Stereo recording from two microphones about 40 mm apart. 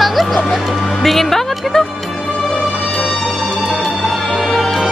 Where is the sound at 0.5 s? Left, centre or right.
Centre.